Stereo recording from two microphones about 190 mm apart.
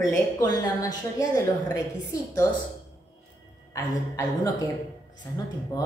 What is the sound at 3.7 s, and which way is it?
Female singing, 20° left (ahead or behind).